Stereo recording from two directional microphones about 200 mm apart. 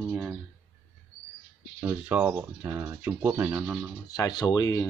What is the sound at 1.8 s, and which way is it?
Speech, 5° right (ahead or behind).